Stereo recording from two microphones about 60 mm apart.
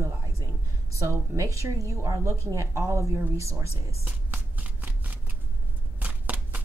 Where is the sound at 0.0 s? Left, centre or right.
Right.